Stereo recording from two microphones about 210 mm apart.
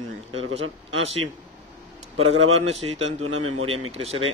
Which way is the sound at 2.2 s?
70° right (ahead or behind).